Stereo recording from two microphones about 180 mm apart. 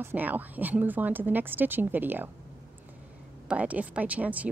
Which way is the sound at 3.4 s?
10° right (ahead or behind).